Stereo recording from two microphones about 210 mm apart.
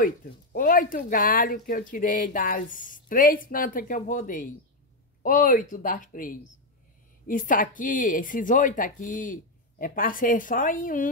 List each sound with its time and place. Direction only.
0.0 s speech: 40° left (ahead or behind)